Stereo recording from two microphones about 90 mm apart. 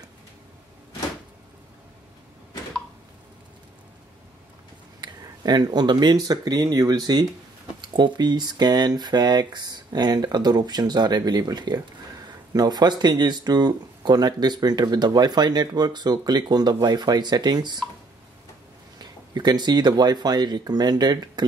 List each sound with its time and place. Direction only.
5.0 s speech: 50° right (ahead or behind)
18.9 s speech: 50° right (ahead or behind)